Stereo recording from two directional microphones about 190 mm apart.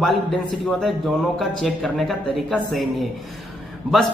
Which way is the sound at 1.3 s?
Centre (ahead or behind).